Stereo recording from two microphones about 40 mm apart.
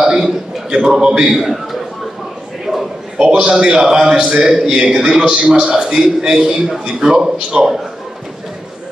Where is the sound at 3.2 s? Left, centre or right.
Right.